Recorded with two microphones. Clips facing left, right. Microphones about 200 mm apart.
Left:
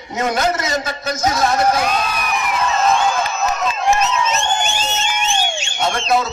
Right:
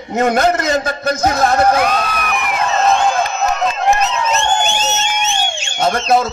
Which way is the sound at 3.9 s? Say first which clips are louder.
Left 2 dB; 55° right (ahead or behind).